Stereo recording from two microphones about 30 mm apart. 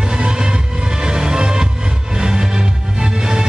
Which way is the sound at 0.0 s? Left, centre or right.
Right.